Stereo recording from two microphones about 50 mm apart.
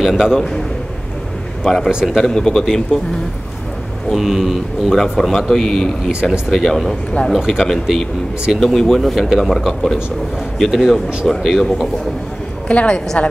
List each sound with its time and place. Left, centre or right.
0.0 s a man's voice: centre
1.6 s speech: centre
2.6 s speech: centre
4.1 s speech: centre
5.5 s speech: centre
7.3 s speech: centre
8.5 s speech: centre
12.6 s a woman's voice: left